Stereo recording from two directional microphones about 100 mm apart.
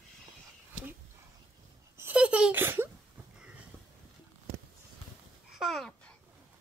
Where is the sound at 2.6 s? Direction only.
20° right (ahead or behind).